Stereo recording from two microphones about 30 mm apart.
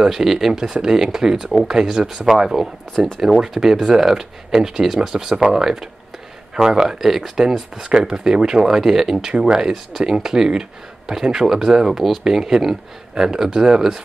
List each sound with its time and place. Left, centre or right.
0.0 s speech: centre
2.0 s speech: right
2.5 s speech: centre
7.0 s speech: centre
8.6 s speech: centre